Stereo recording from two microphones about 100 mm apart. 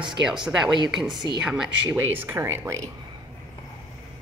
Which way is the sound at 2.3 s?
25° right (ahead or behind).